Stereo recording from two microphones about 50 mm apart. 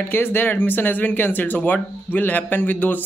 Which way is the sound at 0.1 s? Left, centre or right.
Left.